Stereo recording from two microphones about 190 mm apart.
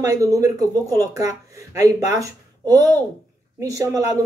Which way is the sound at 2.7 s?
20° right (ahead or behind).